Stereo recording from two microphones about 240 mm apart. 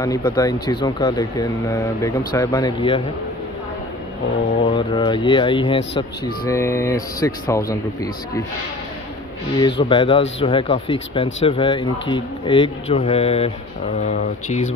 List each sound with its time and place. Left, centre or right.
0.0 s speech: centre
4.6 s speech: left
9.6 s speech: centre